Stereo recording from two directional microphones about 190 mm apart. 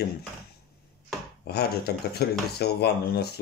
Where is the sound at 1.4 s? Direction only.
60° left (ahead or behind).